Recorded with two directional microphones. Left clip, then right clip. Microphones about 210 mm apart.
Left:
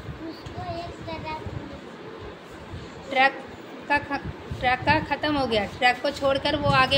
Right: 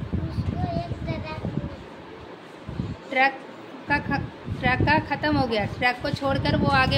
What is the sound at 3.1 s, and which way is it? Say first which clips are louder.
A woman's voice: left 1 dB; 15° right (ahead or behind).